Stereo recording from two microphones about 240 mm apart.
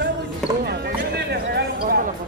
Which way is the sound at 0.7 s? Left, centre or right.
Right.